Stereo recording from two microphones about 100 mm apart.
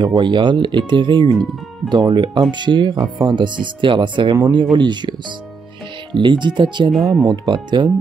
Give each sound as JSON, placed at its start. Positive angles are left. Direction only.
{"t": 0.0, "sound": "speech", "side_deg": -50}
{"t": 6.1, "sound": "speech", "side_deg": -50}
{"t": 6.9, "sound": "speech", "side_deg": 0}
{"t": 7.2, "sound": "speech", "side_deg": -50}